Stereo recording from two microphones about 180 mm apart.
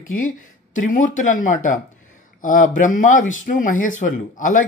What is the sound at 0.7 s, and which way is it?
Speech, 45° left (ahead or behind).